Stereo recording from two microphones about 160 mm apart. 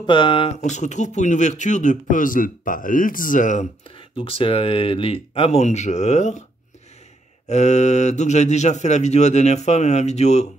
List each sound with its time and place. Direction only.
0.0 s speech: 30° left (ahead or behind)
0.6 s speech: 50° left (ahead or behind)
4.2 s speech: 35° left (ahead or behind)
7.4 s speech: 45° left (ahead or behind)